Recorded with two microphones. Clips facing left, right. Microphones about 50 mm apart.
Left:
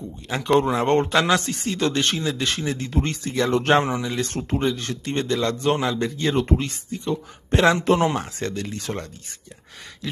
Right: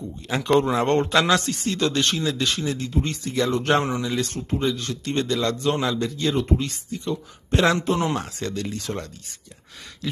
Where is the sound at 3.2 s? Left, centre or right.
Left.